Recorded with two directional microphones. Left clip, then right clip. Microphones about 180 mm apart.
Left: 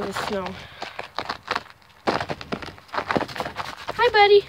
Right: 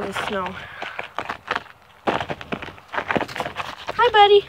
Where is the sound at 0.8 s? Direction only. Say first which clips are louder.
Right 1 dB; 20° right (ahead or behind).